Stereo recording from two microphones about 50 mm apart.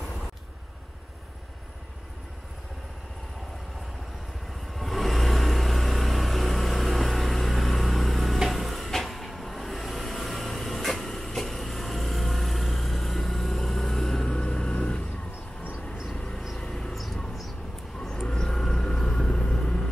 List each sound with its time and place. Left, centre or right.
4.7 s vehicle: centre
16.5 s vehicle: centre
16.9 s a sound: centre
18.0 s vehicle: centre